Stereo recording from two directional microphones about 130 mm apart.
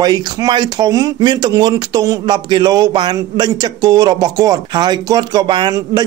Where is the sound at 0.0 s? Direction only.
30° right (ahead or behind).